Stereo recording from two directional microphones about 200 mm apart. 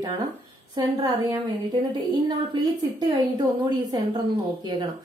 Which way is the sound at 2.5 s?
20° right (ahead or behind).